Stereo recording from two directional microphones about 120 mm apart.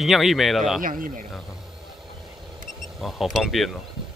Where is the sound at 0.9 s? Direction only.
90° right.